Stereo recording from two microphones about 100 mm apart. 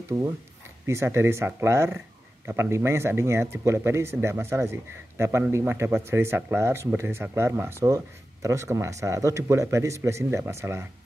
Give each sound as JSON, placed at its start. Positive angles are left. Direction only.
{"t": 0.8, "sound": "speech", "side_deg": -25}